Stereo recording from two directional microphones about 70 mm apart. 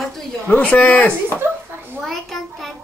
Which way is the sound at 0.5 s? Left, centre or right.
Centre.